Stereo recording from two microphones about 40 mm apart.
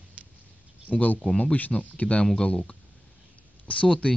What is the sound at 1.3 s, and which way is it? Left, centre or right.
Speech, left.